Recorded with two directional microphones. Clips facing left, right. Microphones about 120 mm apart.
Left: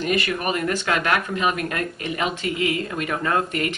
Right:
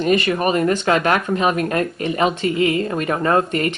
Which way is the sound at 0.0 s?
30° right (ahead or behind).